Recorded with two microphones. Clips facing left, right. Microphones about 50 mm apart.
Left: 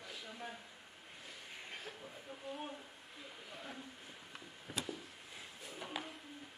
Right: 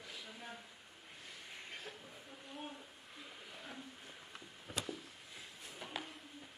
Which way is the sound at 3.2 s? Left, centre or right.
Centre.